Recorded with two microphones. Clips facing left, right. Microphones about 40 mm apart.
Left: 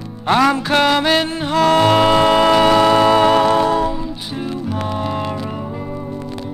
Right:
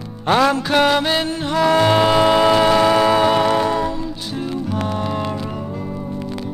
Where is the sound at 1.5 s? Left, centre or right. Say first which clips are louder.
Left 2 dB; left.